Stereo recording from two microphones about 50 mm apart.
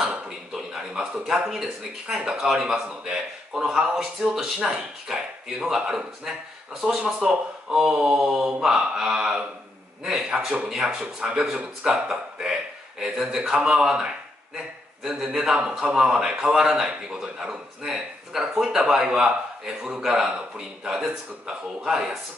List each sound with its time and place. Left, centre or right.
0.0 s a man's voice: centre
7.0 s a man's voice: right
7.2 s a man's voice: centre
16.4 s a man's voice: centre